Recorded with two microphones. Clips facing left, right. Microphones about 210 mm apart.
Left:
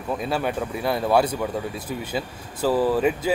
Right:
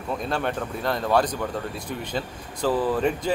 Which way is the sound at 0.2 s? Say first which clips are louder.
Left 2 dB; 5° left (ahead or behind).